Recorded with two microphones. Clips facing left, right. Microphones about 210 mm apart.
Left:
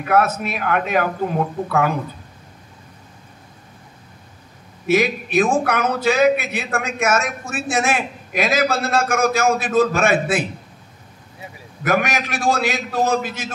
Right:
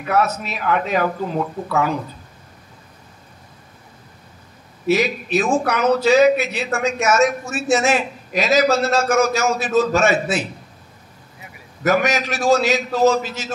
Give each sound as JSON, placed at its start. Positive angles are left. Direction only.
{"t": 0.1, "sound": "speech", "side_deg": 55}
{"t": 4.8, "sound": "speech", "side_deg": 55}
{"t": 11.8, "sound": "speech", "side_deg": 55}